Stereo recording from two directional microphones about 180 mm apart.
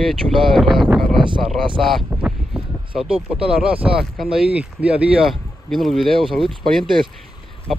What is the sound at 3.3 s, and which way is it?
Speech, 5° right (ahead or behind).